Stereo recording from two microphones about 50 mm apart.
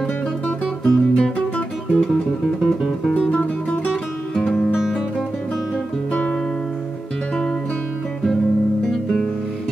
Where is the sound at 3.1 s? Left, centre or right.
Left.